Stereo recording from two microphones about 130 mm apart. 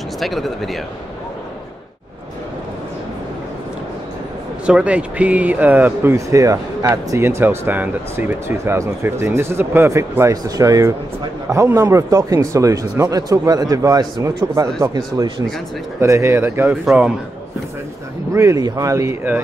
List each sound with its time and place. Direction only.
0.2 s speech: centre (ahead or behind)
4.6 s speech: 10° right (ahead or behind); by 15.4 s 30° right (ahead or behind)
16.0 s speech: 20° right (ahead or behind)
18.3 s speech: 25° right (ahead or behind)